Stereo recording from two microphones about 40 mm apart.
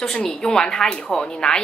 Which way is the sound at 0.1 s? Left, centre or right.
Centre.